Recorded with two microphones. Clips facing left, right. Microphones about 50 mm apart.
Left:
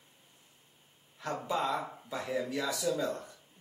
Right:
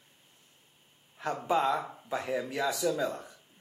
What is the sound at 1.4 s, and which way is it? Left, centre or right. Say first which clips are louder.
Speech: right 5 dB; centre.